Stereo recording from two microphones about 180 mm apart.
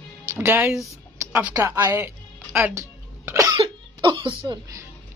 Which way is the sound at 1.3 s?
10° right (ahead or behind).